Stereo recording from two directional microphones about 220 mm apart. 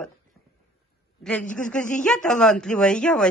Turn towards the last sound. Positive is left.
turn(degrees=5)  # may be behind; listen again after turning